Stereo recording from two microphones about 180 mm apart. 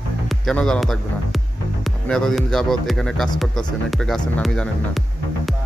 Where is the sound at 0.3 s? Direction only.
5° left (ahead or behind).